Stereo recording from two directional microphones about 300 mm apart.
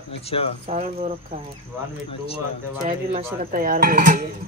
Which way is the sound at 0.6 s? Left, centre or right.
Right.